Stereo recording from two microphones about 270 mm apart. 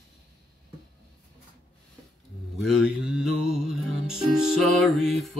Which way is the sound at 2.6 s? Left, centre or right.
Centre.